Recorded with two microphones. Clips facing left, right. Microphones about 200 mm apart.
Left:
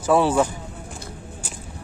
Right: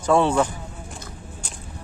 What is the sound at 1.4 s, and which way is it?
Whip, 5° left (ahead or behind).